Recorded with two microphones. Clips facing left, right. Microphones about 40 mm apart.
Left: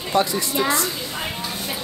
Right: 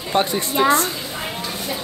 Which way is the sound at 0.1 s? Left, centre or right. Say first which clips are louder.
Right 1 dB; right.